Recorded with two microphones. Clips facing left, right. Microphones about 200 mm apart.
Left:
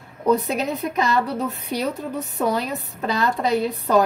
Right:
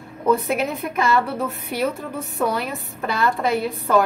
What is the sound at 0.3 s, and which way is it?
A woman's voice, 20° left (ahead or behind).